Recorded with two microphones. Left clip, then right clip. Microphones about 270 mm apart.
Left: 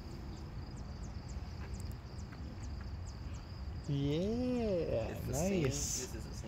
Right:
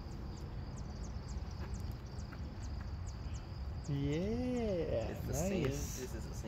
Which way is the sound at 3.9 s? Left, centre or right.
Left.